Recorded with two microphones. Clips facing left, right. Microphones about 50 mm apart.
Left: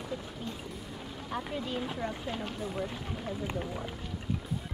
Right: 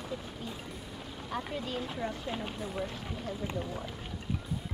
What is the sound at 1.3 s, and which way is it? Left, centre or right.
Speech, centre.